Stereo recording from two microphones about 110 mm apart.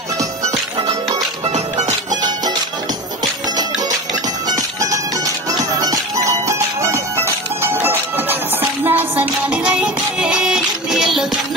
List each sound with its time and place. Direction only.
1.4 s music: 90° right
4.5 s music: 35° right (ahead or behind); by 11.2 s centre (ahead or behind)